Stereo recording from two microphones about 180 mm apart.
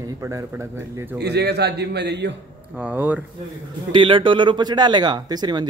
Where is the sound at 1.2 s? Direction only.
65° right (ahead or behind).